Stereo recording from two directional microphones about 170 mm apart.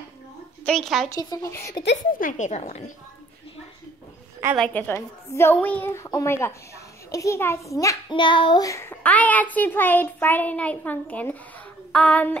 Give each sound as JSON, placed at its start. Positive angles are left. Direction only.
{"t": 0.7, "sound": "a woman's voice", "side_deg": 0}
{"t": 1.1, "sound": "a child's voice", "side_deg": 20}
{"t": 2.1, "sound": "a woman's voice", "side_deg": 50}
{"t": 4.6, "sound": "a child's voice", "side_deg": 10}